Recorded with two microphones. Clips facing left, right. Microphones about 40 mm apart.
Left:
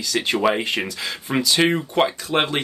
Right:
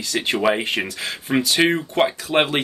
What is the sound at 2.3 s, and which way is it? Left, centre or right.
Speech, centre.